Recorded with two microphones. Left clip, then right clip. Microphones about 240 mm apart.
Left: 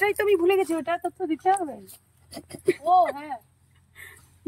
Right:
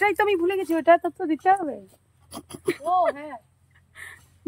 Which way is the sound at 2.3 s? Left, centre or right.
Centre.